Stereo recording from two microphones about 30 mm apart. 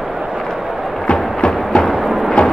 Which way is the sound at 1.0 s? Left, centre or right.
Left.